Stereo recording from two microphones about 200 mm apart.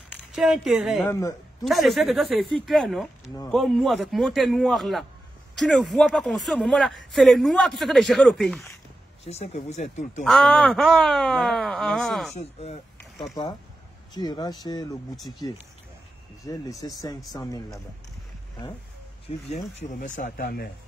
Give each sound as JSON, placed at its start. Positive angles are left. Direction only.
{"t": 0.3, "sound": "speech", "side_deg": 0}
{"t": 9.2, "sound": "a man's voice", "side_deg": 30}
{"t": 10.2, "sound": "speech", "side_deg": 5}
{"t": 12.4, "sound": "a man's voice", "side_deg": 30}
{"t": 14.1, "sound": "speech", "side_deg": 20}
{"t": 15.1, "sound": "speech", "side_deg": 0}
{"t": 16.4, "sound": "speech", "side_deg": 15}
{"t": 19.2, "sound": "a man's voice", "side_deg": 40}